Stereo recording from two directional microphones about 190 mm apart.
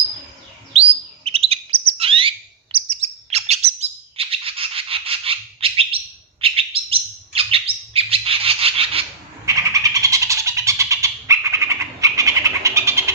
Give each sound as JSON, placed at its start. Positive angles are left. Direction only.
{"t": 0.7, "sound": "bird", "side_deg": -30}
{"t": 9.7, "sound": "bird", "side_deg": -15}